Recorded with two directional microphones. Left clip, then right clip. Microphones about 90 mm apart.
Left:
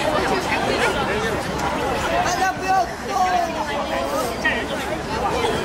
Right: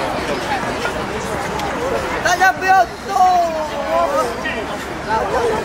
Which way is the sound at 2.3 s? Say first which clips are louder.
Right 7 dB; 20° right (ahead or behind).